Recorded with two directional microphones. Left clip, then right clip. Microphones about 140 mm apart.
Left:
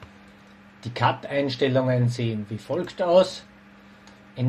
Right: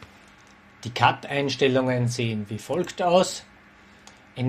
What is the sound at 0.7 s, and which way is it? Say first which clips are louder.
Speech: right 3 dB; 35° right (ahead or behind).